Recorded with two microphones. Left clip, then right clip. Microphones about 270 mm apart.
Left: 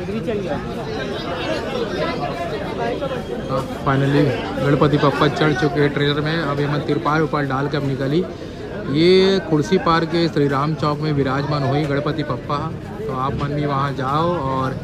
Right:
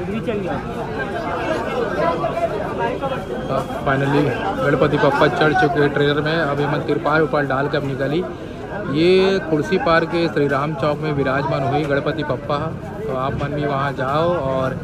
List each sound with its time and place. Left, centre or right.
3.8 s speech: centre
8.9 s a man's voice: left
9.8 s speech: centre